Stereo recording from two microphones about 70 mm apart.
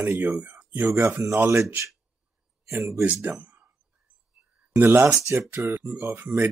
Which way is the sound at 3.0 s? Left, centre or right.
Right.